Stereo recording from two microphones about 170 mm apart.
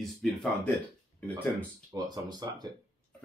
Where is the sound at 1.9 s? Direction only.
25° right (ahead or behind).